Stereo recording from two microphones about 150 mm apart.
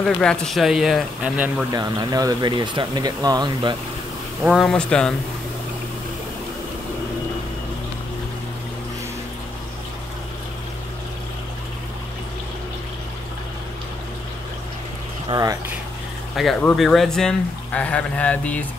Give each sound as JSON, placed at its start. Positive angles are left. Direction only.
{"t": 0.0, "sound": "speech", "side_deg": 5}
{"t": 1.7, "sound": "speech", "side_deg": -25}
{"t": 4.5, "sound": "speech", "side_deg": 0}
{"t": 15.2, "sound": "speech", "side_deg": -25}
{"t": 16.4, "sound": "speech", "side_deg": 0}